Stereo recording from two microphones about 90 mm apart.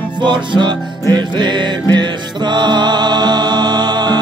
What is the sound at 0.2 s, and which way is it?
Music, 60° right (ahead or behind).